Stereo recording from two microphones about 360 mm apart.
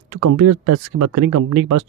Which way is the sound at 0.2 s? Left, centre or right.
Right.